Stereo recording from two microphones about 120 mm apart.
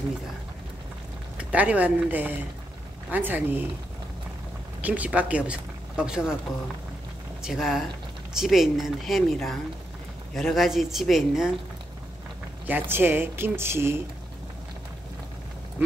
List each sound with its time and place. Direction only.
1.4 s speech: 10° right (ahead or behind)
4.8 s speech: 10° right (ahead or behind)
7.4 s speech: centre (ahead or behind)
12.6 s speech: 15° right (ahead or behind)